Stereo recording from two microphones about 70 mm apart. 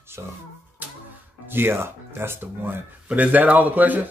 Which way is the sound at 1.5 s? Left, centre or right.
Right.